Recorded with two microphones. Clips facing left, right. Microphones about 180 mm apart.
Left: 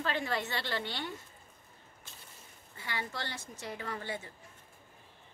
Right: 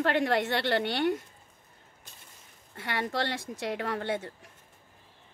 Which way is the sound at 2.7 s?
65° right (ahead or behind).